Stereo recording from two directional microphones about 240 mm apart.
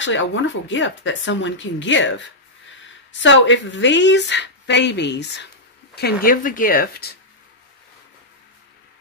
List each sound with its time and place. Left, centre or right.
0.0 s a woman's voice: left